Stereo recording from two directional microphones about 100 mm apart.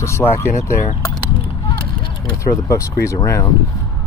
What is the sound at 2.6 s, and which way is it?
Speech, 30° left (ahead or behind).